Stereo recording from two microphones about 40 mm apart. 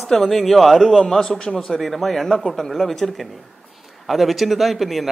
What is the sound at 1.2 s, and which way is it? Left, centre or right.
A man's voice, centre.